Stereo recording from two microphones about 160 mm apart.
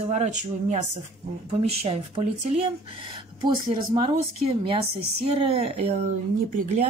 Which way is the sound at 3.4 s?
30° right (ahead or behind).